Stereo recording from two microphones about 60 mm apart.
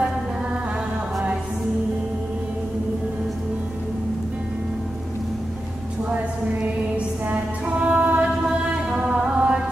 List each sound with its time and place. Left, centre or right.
7.2 s music: right